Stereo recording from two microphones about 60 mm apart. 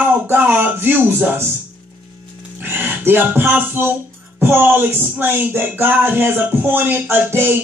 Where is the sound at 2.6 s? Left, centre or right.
Right.